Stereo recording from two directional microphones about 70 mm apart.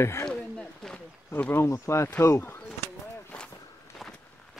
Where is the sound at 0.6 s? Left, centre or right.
Centre.